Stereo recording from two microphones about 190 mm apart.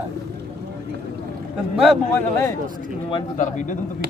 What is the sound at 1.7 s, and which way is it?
Speech, centre (ahead or behind).